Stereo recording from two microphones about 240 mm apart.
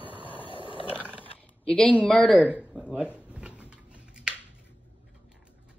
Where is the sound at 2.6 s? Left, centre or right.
Centre.